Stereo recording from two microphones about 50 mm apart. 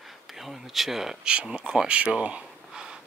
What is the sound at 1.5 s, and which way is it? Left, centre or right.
Speech, right.